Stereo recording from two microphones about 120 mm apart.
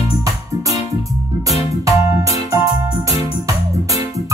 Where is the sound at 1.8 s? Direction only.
25° right (ahead or behind).